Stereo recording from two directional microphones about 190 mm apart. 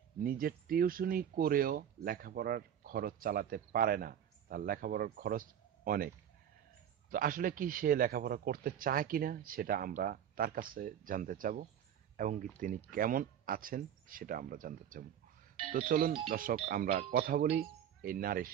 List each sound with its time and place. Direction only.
0.2 s speech: 50° right (ahead or behind)